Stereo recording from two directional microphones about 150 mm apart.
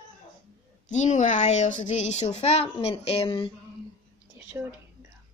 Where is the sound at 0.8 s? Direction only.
55° left (ahead or behind); by 3.5 s 35° left (ahead or behind).